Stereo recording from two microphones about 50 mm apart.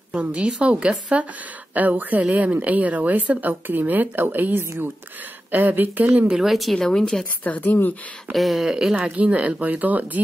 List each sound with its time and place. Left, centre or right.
0.1 s a woman's voice: right
1.7 s speech: right
6.3 s speech: centre
7.4 s speech: left
8.3 s speech: centre
9.0 s speech: right